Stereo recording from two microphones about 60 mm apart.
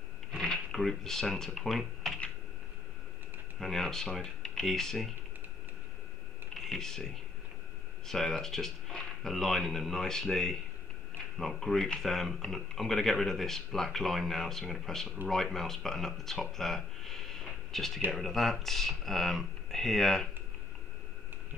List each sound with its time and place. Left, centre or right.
0.3 s a sound: centre
1.5 s speech: centre
3.5 s speech: centre
6.5 s speech: centre